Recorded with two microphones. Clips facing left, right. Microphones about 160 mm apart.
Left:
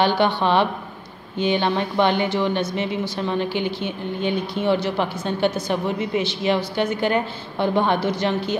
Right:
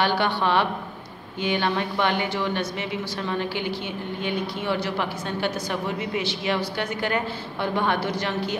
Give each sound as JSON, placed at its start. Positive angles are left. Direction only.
{"t": 0.0, "sound": "speech", "side_deg": 25}